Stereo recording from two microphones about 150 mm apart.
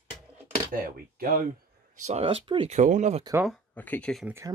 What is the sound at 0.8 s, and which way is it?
Speech, 75° right (ahead or behind).